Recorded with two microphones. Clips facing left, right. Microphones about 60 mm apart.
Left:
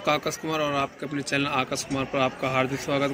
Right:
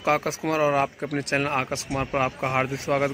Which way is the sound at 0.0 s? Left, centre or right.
Right.